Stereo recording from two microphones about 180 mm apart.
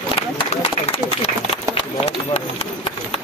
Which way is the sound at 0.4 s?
35° left (ahead or behind).